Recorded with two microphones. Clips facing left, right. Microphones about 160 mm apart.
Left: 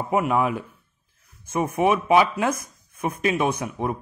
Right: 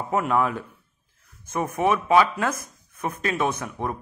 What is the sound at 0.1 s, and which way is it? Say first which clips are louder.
Speech: left 1 dB; 10° left (ahead or behind).